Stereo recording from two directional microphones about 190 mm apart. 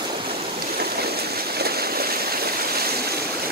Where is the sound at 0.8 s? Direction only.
55° right (ahead or behind).